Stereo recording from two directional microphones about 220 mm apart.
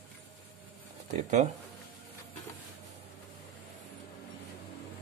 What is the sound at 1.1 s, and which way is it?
Speech, 30° right (ahead or behind).